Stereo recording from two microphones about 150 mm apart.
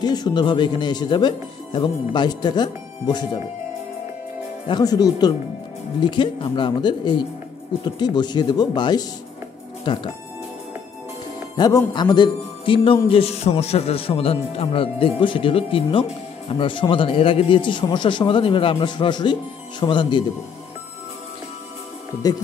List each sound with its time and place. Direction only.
0.0 s speech: 30° left (ahead or behind)
4.6 s a man's voice: 25° left (ahead or behind)
11.5 s a man's voice: 25° left (ahead or behind)